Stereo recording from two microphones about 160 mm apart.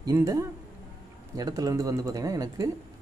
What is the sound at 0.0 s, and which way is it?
A man's voice, 20° right (ahead or behind).